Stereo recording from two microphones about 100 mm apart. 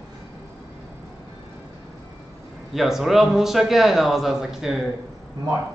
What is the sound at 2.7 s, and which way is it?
Speech, centre (ahead or behind).